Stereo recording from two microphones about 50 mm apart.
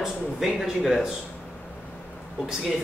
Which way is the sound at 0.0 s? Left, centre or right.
Centre.